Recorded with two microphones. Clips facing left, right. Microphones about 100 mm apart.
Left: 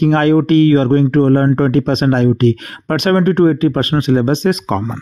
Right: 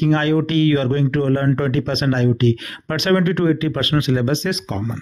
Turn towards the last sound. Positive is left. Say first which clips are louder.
# left 7 dB
turn(degrees=60)  # may be behind; listen again after turning